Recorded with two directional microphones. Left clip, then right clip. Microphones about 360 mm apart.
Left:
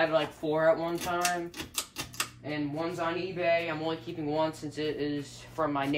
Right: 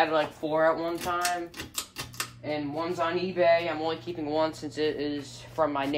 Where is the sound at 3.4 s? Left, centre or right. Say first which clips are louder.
Right 4 dB; right.